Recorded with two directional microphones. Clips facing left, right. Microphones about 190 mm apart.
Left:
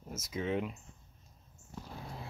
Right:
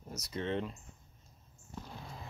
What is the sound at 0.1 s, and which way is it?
Speech, 5° left (ahead or behind).